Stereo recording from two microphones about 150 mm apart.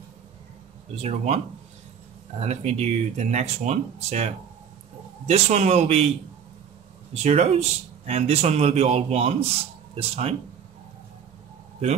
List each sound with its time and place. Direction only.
1.0 s speech: 45° right (ahead or behind)
2.4 s speech: 50° right (ahead or behind)
7.2 s speech: 45° right (ahead or behind)